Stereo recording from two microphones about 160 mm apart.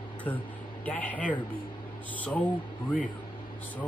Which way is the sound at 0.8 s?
10° left (ahead or behind).